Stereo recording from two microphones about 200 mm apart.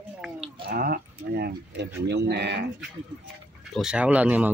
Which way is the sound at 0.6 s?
50° right (ahead or behind).